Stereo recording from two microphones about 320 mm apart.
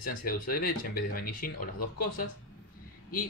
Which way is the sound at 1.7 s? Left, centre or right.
Left.